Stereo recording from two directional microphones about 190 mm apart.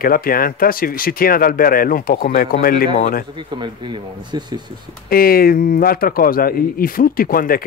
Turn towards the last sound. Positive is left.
turn(degrees=50)  # may be behind; listen again after turning